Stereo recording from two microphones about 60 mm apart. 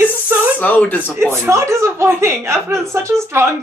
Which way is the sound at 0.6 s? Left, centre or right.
Left.